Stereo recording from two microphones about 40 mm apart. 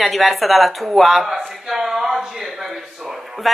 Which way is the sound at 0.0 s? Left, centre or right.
Centre.